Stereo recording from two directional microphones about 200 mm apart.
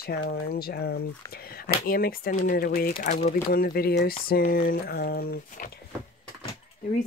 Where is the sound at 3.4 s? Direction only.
50° left (ahead or behind).